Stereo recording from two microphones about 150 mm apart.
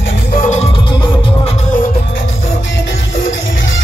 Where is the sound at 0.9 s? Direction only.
30° left (ahead or behind).